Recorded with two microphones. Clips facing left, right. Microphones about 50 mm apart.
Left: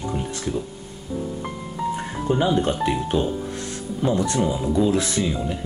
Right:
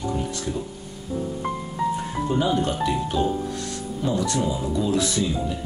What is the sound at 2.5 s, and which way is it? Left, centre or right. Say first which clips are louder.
Speech: left 2 dB; left.